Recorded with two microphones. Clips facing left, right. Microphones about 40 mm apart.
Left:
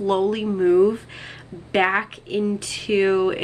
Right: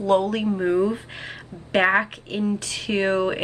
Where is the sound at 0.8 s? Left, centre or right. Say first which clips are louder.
Left 5 dB; centre.